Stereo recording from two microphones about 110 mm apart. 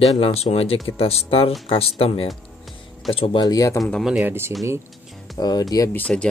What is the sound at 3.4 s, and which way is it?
Speech, 35° left (ahead or behind).